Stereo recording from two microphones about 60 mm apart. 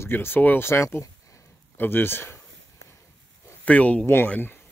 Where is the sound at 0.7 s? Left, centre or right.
Left.